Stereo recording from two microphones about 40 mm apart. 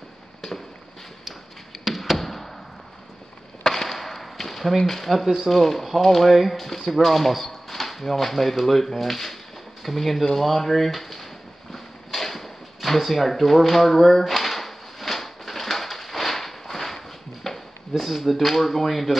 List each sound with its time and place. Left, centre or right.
1.9 s tap: centre
3.6 s chop: centre
5.2 s speech: centre
5.5 s speech: centre
11.7 s a sound: centre